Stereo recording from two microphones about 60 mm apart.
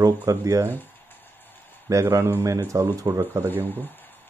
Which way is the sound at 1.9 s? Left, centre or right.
Right.